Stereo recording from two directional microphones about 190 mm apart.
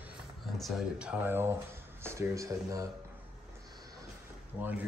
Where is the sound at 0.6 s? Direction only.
5° right (ahead or behind).